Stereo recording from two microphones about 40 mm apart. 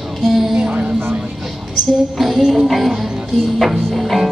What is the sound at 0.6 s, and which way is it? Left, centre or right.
Music, right.